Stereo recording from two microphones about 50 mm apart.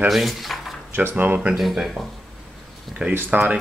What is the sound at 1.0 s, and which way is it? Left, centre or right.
Speech, right.